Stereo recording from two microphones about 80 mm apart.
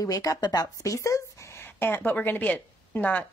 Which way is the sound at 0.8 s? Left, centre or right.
Left.